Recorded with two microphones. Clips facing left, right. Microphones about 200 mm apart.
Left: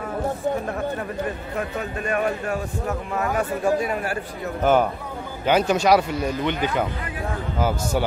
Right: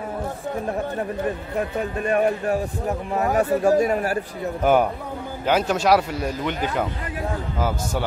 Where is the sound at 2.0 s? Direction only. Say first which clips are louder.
Right 4 dB; 35° right (ahead or behind).